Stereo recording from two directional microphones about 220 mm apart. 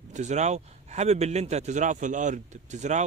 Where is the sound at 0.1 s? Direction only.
30° right (ahead or behind).